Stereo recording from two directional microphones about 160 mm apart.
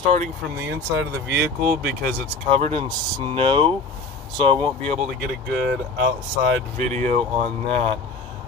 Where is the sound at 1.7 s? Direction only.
65° right (ahead or behind).